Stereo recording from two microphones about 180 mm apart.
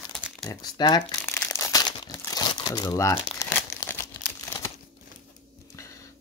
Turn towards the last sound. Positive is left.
turn(degrees=15)  # may be behind; listen again after turning